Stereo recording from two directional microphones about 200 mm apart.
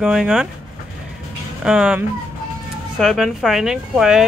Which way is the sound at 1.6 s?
5° right (ahead or behind).